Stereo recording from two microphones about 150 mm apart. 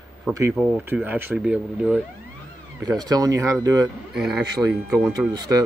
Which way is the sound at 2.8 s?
25° right (ahead or behind).